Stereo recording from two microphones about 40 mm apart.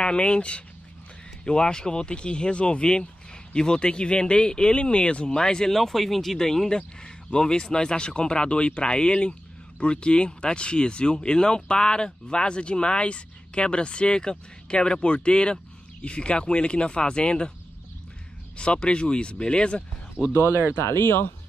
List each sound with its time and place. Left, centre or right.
0.0 s speech: left
5.8 s speech: centre; by 17.5 s left
18.6 s speech: left
20.2 s speech: left
20.7 s speech: left